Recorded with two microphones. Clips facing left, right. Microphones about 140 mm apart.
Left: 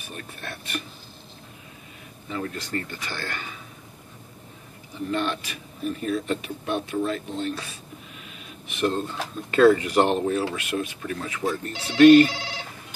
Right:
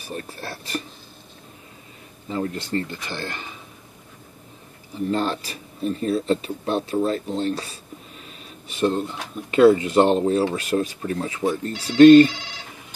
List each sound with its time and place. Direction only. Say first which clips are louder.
0.0 s speech: right 5 dB; 35° right (ahead or behind)
2.2 s speech: right 4 dB; 30° right (ahead or behind)
5.1 s speech: right 2 dB; 35° right (ahead or behind)
8.9 s speech: right 2 dB; 20° right (ahead or behind)